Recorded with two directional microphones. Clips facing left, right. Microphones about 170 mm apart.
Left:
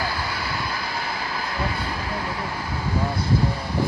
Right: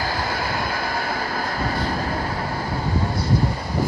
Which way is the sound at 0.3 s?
50° right (ahead or behind).